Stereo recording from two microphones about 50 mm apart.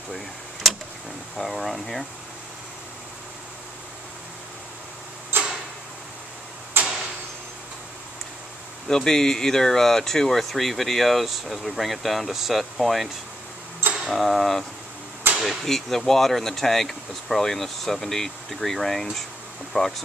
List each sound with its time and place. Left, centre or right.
0.1 s power windows: centre
1.3 s speech: centre
5.3 s tick-tock: right
6.8 s a sound: right
8.8 s speech: centre
15.3 s a sound: centre
15.6 s speech: centre
19.7 s speech: left